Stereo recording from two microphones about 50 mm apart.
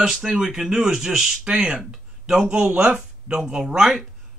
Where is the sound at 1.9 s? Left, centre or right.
Centre.